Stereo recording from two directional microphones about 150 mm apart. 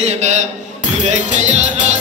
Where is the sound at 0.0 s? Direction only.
50° right (ahead or behind).